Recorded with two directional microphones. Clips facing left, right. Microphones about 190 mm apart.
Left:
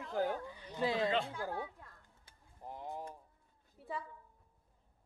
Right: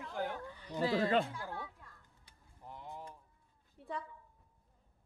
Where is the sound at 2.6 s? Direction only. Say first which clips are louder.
Left 4 dB; 40° left (ahead or behind).